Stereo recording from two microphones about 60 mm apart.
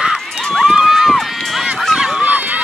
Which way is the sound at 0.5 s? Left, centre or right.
Centre.